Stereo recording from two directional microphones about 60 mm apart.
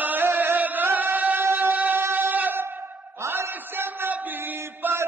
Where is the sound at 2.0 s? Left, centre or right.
Right.